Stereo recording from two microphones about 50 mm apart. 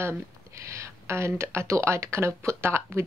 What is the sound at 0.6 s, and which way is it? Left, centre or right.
Speech, right.